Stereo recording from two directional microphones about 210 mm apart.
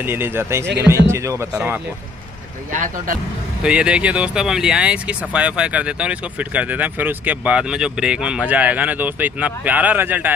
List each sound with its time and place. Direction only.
0.0 s speech: 10° right (ahead or behind)
2.7 s speech: 40° right (ahead or behind)
3.6 s speech: 5° right (ahead or behind)